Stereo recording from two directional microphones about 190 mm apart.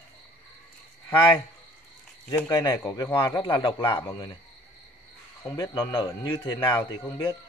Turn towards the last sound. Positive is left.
turn(degrees=20)  # may be behind; listen again after turning